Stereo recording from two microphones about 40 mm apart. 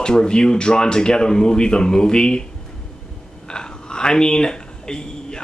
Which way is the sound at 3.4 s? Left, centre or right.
Left.